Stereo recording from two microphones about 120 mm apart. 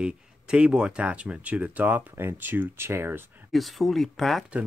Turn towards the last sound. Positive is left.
turn(degrees=0)  # may be behind; listen again after turning